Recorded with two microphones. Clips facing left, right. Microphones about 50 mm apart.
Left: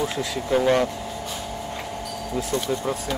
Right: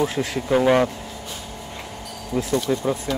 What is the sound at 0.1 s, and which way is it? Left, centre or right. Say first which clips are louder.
Speech: right 2 dB; right.